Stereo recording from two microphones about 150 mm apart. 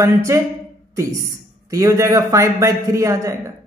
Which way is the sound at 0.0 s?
20° right (ahead or behind).